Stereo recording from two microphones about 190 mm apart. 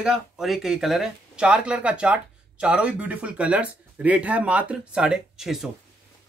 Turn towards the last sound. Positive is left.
turn(degrees=0)  # may be behind; listen again after turning